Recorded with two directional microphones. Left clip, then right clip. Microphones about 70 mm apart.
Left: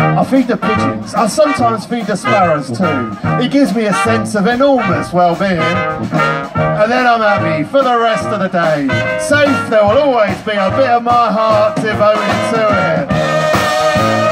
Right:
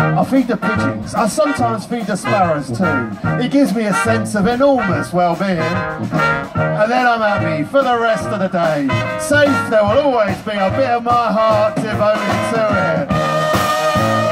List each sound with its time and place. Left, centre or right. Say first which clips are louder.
0.0 s music: left 3 dB; left
6.8 s music: left 3 dB; left